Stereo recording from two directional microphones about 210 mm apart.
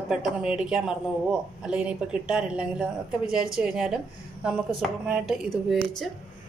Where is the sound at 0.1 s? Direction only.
5° right (ahead or behind).